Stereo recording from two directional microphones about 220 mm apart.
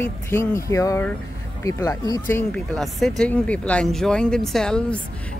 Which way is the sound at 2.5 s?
Centre (ahead or behind).